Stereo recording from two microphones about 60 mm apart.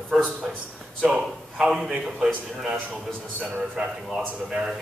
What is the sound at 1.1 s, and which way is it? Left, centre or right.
A man's voice, centre.